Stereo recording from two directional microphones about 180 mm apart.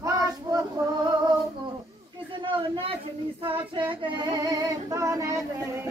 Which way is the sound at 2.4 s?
30° right (ahead or behind).